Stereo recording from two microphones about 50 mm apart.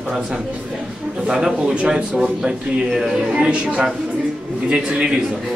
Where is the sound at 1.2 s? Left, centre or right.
Centre.